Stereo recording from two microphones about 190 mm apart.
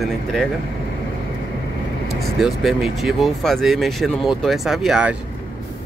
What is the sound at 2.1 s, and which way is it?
Speech, centre (ahead or behind).